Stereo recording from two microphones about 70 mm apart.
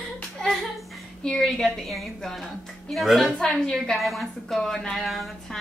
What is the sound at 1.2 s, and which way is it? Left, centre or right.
A woman's voice, centre.